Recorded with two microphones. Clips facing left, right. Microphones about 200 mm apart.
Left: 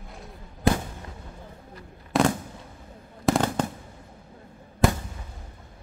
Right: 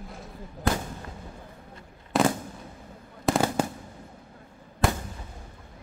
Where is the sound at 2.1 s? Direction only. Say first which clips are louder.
Left 1 dB; centre (ahead or behind).